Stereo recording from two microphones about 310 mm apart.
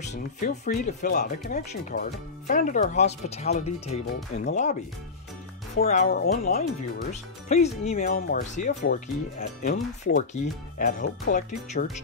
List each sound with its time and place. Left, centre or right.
0.1 s speech: left
5.8 s speech: left